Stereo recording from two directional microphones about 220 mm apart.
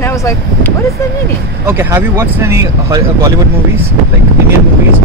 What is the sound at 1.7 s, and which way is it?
Speech, 10° right (ahead or behind).